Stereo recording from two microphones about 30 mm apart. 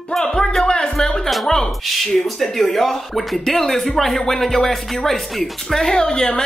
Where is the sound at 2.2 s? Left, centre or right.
Centre.